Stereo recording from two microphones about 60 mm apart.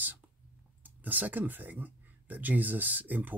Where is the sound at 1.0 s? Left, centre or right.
Right.